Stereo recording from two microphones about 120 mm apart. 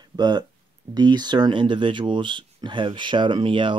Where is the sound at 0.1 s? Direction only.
35° right (ahead or behind).